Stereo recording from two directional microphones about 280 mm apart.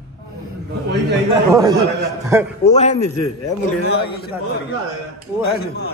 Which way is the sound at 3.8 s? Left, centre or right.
Left.